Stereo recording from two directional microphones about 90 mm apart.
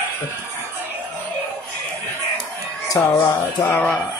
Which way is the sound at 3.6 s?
20° left (ahead or behind).